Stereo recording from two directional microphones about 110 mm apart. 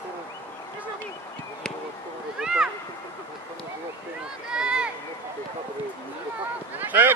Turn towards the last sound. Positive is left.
turn(degrees=-15)  # may be behind; listen again after turning